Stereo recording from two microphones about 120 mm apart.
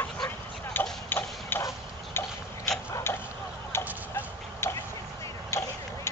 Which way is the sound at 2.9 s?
20° left (ahead or behind).